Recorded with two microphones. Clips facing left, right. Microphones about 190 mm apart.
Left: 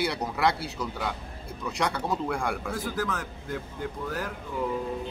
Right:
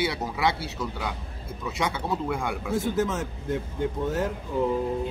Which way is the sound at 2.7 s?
25° right (ahead or behind).